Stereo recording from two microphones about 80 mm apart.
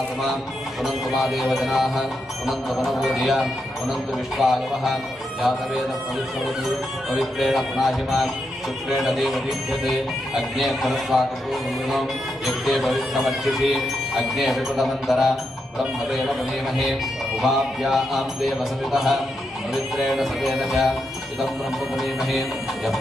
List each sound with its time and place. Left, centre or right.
0.8 s music: centre
7.2 s music: centre
12.4 s music: centre
17.4 s music: centre
21.9 s music: centre